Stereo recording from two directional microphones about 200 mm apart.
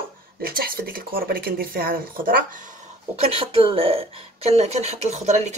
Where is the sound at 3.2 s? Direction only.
30° right (ahead or behind).